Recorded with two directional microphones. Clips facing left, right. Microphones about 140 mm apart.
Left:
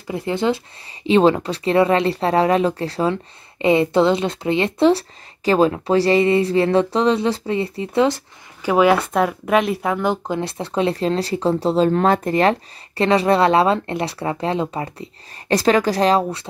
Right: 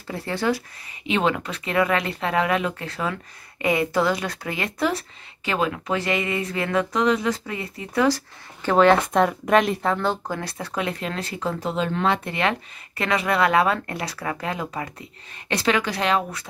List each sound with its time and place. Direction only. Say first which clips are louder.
0.1 s speech: left 4 dB; 20° left (ahead or behind)
1.0 s speech: left 8 dB; 30° left (ahead or behind)
8.6 s speech: left 1 dB; 10° left (ahead or behind); by 16.4 s 30° left (ahead or behind)